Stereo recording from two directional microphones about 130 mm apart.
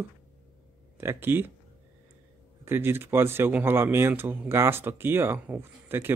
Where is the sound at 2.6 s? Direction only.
15° right (ahead or behind).